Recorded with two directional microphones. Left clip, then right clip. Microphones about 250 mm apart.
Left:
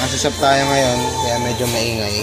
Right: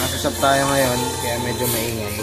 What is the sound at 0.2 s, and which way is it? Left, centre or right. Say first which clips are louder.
Speech: left 3 dB; centre.